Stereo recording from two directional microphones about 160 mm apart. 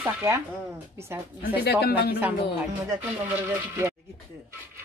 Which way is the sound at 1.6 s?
85° left.